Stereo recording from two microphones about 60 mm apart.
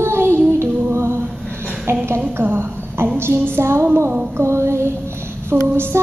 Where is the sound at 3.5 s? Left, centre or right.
Right.